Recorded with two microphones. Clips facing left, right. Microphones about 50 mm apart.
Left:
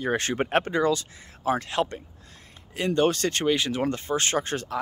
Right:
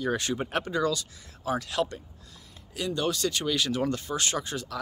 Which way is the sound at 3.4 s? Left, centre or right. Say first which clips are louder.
Left 4 dB; left.